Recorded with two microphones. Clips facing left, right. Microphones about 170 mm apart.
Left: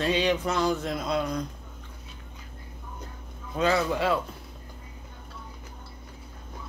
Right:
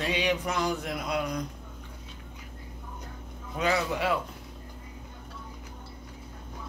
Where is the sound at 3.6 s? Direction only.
15° right (ahead or behind).